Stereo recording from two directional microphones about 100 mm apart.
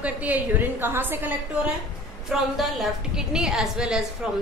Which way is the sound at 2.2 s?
5° right (ahead or behind).